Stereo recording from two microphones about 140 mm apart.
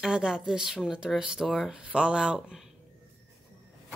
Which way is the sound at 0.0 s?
5° right (ahead or behind).